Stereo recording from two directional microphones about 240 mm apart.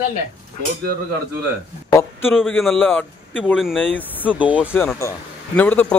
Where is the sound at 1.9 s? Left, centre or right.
Centre.